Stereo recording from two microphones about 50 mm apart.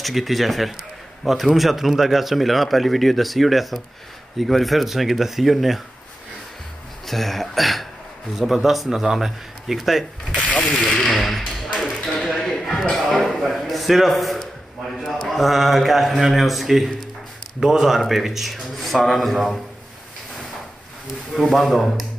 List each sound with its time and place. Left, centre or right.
0.0 s speech: centre
7.1 s speech: centre
10.3 s a sound: left
10.9 s speech: centre
11.9 s a sound: centre
17.6 s a man's voice: centre
21.4 s speech: centre